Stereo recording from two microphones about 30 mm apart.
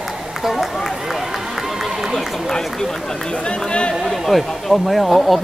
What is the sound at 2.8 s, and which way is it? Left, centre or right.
Speech, centre.